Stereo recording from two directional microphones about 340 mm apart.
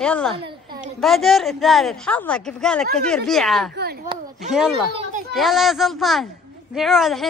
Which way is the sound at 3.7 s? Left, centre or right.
Right.